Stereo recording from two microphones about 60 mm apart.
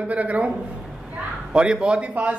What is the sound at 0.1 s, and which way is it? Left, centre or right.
Speech, right.